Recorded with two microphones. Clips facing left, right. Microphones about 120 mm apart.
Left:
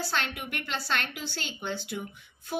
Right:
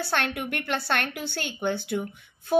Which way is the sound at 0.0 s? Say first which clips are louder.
Right 4 dB; 55° right (ahead or behind).